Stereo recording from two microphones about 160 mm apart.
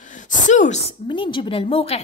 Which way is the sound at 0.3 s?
50° left (ahead or behind).